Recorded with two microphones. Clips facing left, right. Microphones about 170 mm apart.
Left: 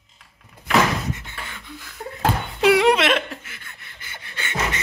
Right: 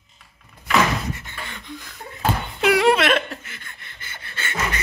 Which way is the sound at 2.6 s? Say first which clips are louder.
Left 1 dB; 20° left (ahead or behind).